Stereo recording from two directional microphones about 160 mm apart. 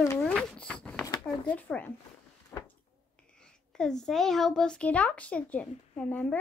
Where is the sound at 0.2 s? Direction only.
5° left (ahead or behind).